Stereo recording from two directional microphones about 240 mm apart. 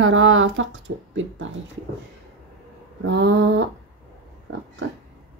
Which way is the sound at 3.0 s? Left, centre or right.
Right.